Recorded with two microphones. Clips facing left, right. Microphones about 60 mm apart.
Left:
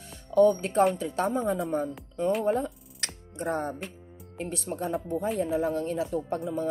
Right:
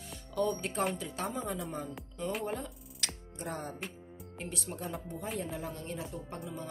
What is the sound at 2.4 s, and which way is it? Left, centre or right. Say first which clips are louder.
Music: left 10 dB; left.